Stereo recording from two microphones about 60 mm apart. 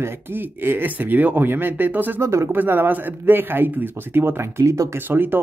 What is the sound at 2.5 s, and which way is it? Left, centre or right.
A man's voice, right.